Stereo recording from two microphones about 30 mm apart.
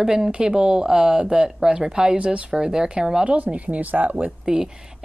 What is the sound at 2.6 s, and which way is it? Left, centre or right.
Speech, right.